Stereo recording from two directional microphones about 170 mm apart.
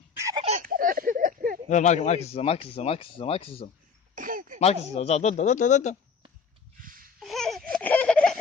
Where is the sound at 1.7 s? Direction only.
45° left (ahead or behind).